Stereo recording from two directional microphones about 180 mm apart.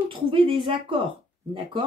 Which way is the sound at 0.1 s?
30° right (ahead or behind).